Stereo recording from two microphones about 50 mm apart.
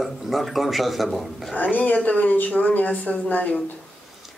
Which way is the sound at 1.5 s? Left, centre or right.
Left.